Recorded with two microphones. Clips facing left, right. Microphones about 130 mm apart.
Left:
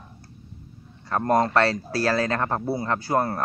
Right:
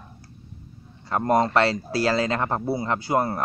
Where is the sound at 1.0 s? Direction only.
15° right (ahead or behind).